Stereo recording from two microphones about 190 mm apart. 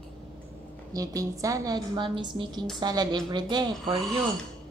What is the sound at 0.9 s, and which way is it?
A woman's voice, 20° right (ahead or behind).